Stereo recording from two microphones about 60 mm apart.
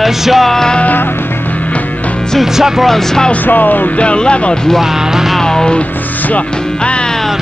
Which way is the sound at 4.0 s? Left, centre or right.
Centre.